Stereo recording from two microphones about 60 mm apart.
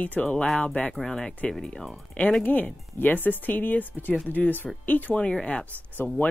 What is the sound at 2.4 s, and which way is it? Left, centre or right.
Speech, left.